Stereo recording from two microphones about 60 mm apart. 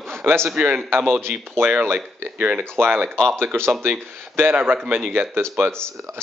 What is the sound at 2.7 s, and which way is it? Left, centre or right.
Speech, right.